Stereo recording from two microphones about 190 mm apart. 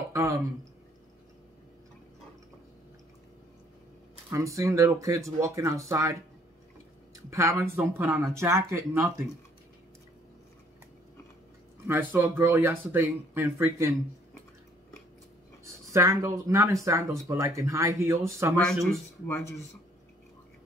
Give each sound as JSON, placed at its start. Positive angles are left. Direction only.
{"t": 0.1, "sound": "a sound", "side_deg": -15}
{"t": 4.3, "sound": "speech", "side_deg": -15}
{"t": 7.2, "sound": "speech", "side_deg": -15}
{"t": 11.9, "sound": "speech", "side_deg": -10}
{"t": 15.6, "sound": "speech", "side_deg": -15}
{"t": 18.6, "sound": "speech", "side_deg": 0}